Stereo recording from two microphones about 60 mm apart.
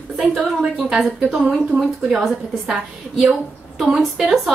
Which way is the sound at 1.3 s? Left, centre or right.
Centre.